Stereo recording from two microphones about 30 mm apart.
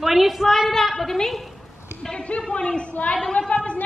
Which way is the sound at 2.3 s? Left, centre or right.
Left.